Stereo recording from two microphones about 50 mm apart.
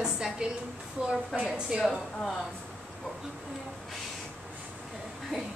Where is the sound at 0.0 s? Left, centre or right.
Centre.